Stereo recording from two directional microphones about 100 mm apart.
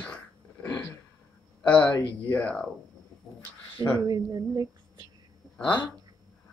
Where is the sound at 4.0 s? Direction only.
40° right (ahead or behind).